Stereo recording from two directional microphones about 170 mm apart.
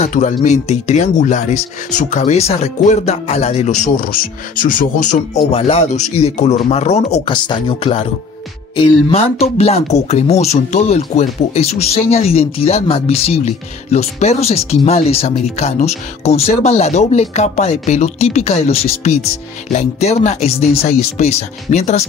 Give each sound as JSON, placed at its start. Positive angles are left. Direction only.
{"t": 0.0, "sound": "speech", "side_deg": 45}